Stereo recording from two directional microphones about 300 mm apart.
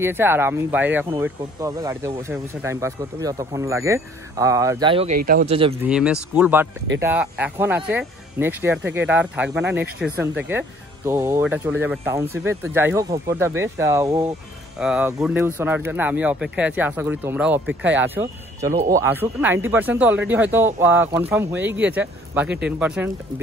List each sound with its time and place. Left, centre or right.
0.0 s speech: centre
5.8 s speech: centre
18.7 s speech: right
18.9 s speech: centre